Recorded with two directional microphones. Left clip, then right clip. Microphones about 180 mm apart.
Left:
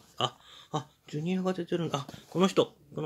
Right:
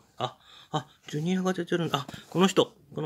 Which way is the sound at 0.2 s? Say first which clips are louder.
Left 2 dB; centre (ahead or behind).